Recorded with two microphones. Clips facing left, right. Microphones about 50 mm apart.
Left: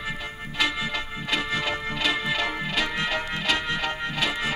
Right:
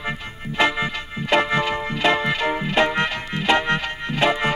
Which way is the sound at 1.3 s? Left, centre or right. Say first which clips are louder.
Right 9 dB; right.